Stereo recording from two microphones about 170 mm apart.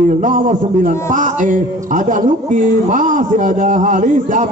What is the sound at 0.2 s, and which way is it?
A man's voice, 45° right (ahead or behind).